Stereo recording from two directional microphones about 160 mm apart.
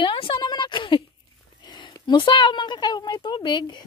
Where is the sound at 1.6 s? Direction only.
25° left (ahead or behind).